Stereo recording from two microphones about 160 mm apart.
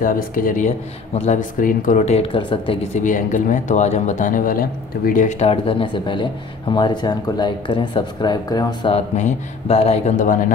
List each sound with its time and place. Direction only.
0.0 s speech: 60° left (ahead or behind); by 3.0 s 35° left (ahead or behind)
3.0 s speech: 50° left (ahead or behind)
5.5 s speech: 35° left (ahead or behind)
8.8 s speech: 45° left (ahead or behind)